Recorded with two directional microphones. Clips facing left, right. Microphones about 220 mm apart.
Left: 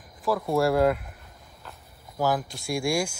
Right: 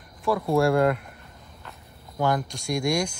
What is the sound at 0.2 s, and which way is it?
Speech, centre (ahead or behind).